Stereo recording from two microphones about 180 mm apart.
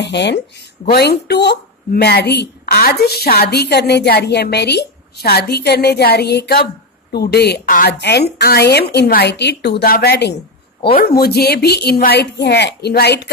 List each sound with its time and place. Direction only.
0.0 s a woman's voice: 70° left (ahead or behind)